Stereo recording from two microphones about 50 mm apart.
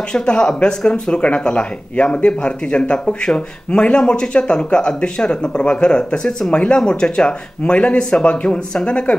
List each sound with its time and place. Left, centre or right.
0.1 s speech: centre